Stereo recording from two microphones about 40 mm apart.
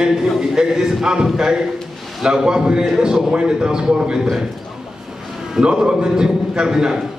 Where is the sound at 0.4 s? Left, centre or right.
Centre.